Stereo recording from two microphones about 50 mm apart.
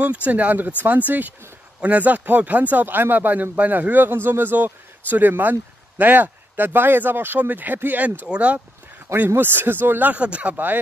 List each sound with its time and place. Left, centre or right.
0.0 s a man's voice: right
8.3 s speech: right
9.4 s speech: right
10.2 s speech: right